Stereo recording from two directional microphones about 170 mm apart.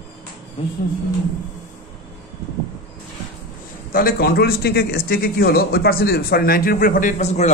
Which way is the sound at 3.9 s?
60° left (ahead or behind).